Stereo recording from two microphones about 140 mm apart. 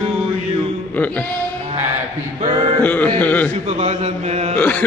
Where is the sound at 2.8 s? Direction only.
10° left (ahead or behind).